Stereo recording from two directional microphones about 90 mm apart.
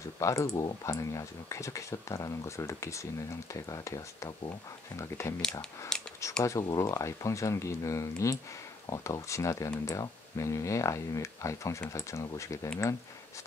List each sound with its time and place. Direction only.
0.2 s speech: 40° left (ahead or behind)
5.4 s speech: 5° left (ahead or behind)
6.4 s speech: 35° left (ahead or behind)